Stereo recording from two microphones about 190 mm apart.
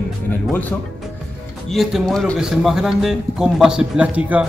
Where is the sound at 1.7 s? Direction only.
Centre (ahead or behind).